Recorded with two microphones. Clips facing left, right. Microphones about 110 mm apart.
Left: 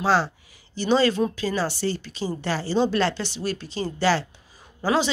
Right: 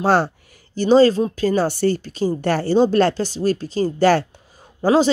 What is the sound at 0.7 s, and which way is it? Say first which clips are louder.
Speech: right 7 dB; 40° right (ahead or behind).